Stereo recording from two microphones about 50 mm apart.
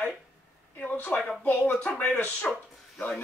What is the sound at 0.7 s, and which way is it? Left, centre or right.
Speech, left.